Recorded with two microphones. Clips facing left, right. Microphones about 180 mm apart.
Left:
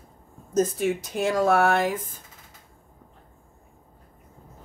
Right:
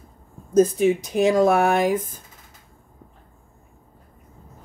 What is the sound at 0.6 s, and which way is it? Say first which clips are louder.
Speech: right 6 dB; 15° right (ahead or behind).